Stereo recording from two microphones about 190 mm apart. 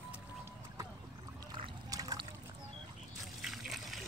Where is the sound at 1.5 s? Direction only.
20° right (ahead or behind).